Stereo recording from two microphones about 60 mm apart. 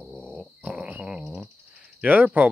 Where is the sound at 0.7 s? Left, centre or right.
Right.